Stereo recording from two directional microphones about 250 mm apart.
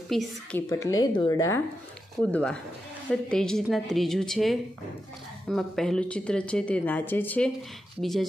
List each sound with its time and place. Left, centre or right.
0.1 s a woman's voice: centre